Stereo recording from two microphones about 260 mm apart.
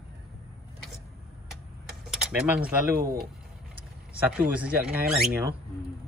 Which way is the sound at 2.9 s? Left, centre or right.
Right.